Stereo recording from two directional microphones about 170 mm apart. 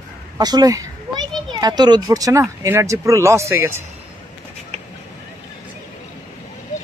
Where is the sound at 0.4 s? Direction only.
25° right (ahead or behind).